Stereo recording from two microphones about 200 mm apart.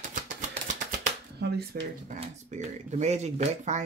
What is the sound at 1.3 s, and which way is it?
Speech, 60° right (ahead or behind).